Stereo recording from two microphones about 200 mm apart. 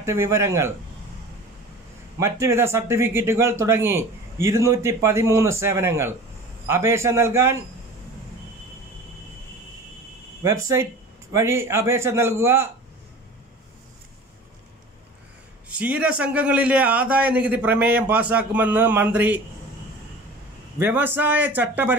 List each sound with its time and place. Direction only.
0.0 s speech: 15° right (ahead or behind)
2.1 s speech: 15° right (ahead or behind)
10.4 s speech: 15° right (ahead or behind)
15.7 s speech: 5° right (ahead or behind)
20.8 s speech: 10° right (ahead or behind)